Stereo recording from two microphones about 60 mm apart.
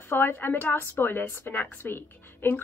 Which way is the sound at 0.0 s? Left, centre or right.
Left.